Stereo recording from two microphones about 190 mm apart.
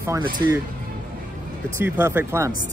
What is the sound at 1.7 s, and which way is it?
Speech, 10° right (ahead or behind).